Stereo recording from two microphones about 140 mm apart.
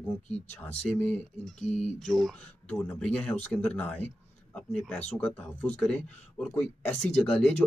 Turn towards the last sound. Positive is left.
turn(degrees=5)  # may be behind; listen again after turning